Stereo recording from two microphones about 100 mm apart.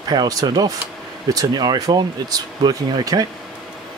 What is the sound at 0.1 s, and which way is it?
Speech, 40° right (ahead or behind).